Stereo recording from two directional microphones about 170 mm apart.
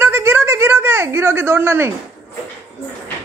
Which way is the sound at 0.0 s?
15° right (ahead or behind).